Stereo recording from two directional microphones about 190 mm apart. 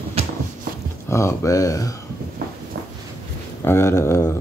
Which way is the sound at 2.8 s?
60° right (ahead or behind).